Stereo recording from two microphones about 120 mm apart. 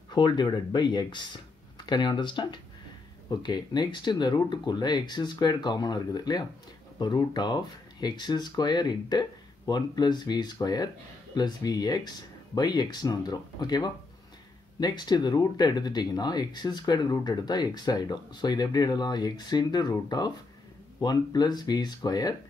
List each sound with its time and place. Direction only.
0.1 s speech: 40° left (ahead or behind)